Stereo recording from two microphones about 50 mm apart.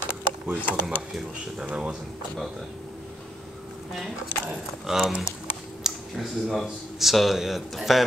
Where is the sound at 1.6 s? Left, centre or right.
Centre.